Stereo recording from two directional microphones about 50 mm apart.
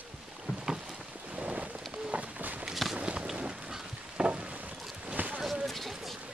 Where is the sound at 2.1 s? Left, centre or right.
Right.